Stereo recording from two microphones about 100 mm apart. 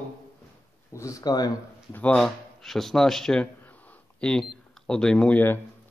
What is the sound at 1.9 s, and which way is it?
Speech, 15° left (ahead or behind).